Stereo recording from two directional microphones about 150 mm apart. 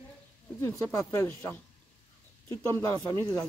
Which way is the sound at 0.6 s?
20° left (ahead or behind).